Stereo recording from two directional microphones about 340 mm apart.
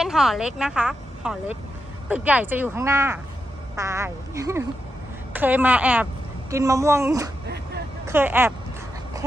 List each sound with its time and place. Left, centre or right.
0.0 s a woman's voice: centre
7.4 s vehicle: right
8.1 s speech: centre